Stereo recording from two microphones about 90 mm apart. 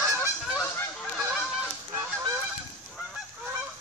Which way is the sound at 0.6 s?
20° left (ahead or behind).